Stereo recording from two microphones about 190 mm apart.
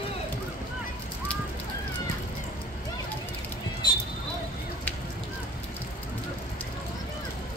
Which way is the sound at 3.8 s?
20° left (ahead or behind).